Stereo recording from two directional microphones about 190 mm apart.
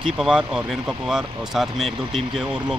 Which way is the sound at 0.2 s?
5° right (ahead or behind).